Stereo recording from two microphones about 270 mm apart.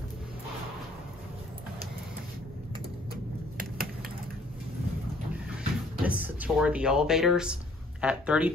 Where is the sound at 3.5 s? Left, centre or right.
Right.